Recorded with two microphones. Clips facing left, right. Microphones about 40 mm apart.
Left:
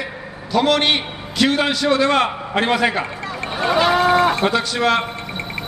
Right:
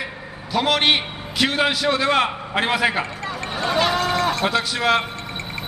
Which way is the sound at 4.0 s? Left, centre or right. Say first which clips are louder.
Left 6 dB; left.